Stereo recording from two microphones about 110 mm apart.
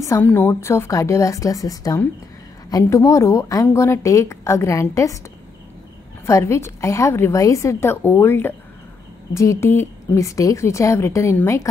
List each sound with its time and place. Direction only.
0.0 s a woman's voice: 20° left (ahead or behind)
6.2 s a woman's voice: 25° left (ahead or behind)